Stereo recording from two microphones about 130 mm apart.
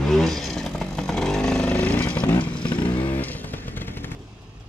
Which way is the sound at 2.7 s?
40° left (ahead or behind).